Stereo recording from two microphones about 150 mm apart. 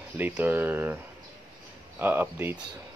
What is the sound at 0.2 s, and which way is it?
Speech, 10° right (ahead or behind).